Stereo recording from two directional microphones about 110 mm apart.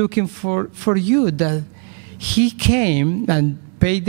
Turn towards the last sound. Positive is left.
turn(degrees=-15)  # may be behind; listen again after turning